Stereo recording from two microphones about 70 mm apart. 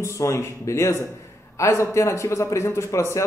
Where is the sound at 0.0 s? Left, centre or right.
Left.